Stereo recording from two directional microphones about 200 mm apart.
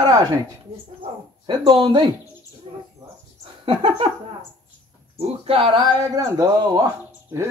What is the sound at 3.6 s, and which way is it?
Speech, 30° right (ahead or behind).